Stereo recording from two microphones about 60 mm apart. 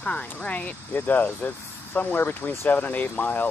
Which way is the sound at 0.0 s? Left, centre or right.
Left.